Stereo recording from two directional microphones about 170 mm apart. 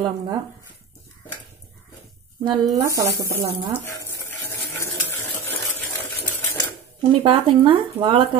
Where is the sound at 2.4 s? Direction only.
25° right (ahead or behind).